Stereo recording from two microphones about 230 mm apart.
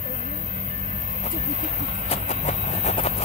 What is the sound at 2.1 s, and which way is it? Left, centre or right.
Vehicle, left.